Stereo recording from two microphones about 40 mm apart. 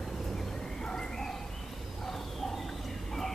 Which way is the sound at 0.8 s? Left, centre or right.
Centre.